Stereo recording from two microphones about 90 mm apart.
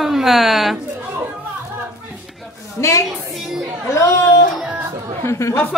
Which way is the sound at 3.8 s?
35° left (ahead or behind).